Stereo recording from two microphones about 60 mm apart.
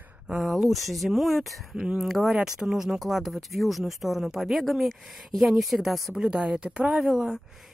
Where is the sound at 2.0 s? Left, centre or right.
Centre.